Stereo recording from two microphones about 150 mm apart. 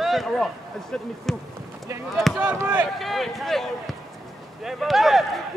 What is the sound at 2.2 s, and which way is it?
Speech, 10° right (ahead or behind).